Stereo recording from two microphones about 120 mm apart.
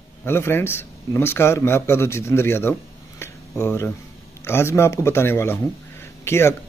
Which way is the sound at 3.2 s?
20° left (ahead or behind).